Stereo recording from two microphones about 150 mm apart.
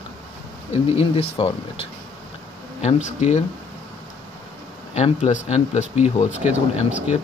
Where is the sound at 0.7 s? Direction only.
40° left (ahead or behind).